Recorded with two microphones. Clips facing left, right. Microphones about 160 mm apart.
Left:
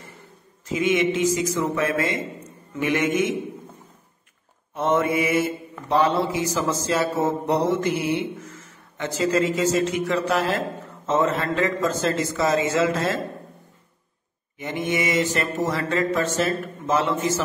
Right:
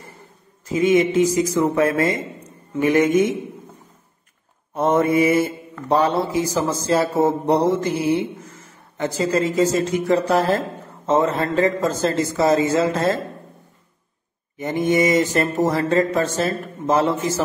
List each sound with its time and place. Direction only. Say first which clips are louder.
0.7 s speech: right 5 dB; 40° right (ahead or behind)
4.7 s speech: right 4 dB; 40° right (ahead or behind)
14.6 s speech: right 7 dB; 40° right (ahead or behind)